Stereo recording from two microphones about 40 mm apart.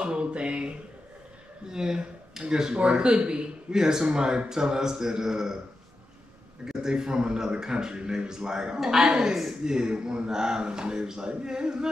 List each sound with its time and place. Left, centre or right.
0.0 s speech: right
1.7 s speech: centre
6.6 s speech: centre
8.7 s speech: centre